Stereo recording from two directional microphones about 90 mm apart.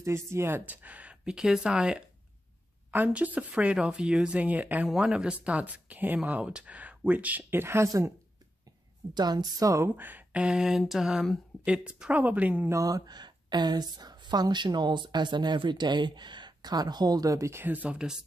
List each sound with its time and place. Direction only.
0.0 s speech: 30° right (ahead or behind)
0.8 s speech: 15° right (ahead or behind)
9.1 s a woman's voice: 50° right (ahead or behind)
9.8 s speech: 20° right (ahead or behind)
10.8 s mantra: 5° right (ahead or behind)
11.6 s speech: 10° right (ahead or behind)
12.6 s a woman's voice: 35° right (ahead or behind); by 18.2 s 10° right (ahead or behind)